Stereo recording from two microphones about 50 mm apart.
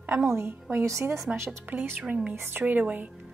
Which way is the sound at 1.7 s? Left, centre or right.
Right.